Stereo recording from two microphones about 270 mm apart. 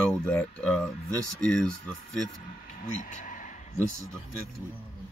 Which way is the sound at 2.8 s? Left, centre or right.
Left.